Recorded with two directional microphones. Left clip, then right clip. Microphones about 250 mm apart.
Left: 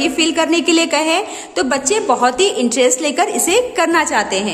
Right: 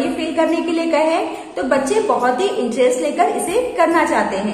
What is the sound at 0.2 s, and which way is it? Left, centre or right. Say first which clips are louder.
A woman's voice: left 3 dB; left.